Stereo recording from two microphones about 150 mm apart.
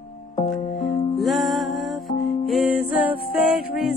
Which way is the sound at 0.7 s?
45° left (ahead or behind).